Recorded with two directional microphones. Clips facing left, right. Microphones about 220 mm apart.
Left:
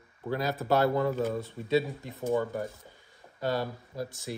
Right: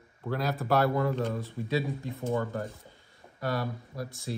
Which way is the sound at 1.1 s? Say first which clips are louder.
Left 1 dB; 5° left (ahead or behind).